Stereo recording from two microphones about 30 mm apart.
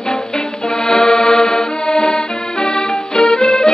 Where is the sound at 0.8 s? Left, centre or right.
Left.